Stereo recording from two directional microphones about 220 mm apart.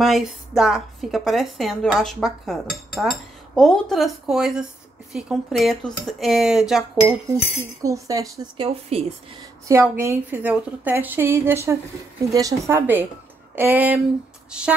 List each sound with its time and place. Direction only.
0.0 s a woman's voice: centre (ahead or behind)
7.8 s a woman's voice: 15° right (ahead or behind)
9.7 s a woman's voice: 10° right (ahead or behind)